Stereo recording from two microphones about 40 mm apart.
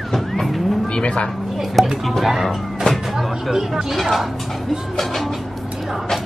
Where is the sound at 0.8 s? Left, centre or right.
Left.